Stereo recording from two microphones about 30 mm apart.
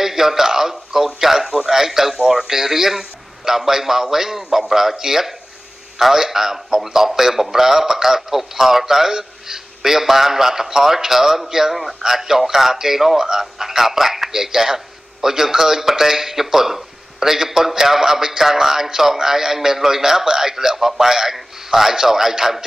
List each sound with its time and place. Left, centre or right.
0.0 s a man's voice: centre